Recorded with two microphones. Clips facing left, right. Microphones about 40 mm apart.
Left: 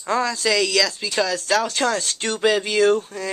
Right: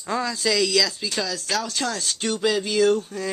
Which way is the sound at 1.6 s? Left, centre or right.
Left.